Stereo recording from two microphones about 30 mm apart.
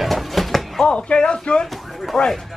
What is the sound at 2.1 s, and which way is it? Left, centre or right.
Speech, centre.